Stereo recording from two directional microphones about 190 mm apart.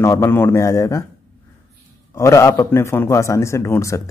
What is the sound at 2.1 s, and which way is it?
Speech, 15° left (ahead or behind).